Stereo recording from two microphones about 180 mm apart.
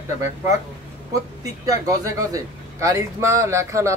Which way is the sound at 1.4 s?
20° right (ahead or behind).